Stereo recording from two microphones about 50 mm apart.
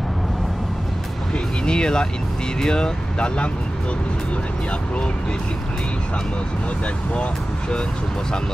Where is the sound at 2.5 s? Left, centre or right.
Centre.